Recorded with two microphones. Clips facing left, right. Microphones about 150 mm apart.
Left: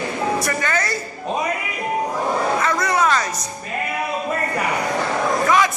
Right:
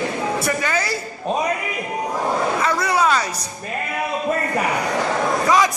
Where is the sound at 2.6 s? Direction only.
10° right (ahead or behind).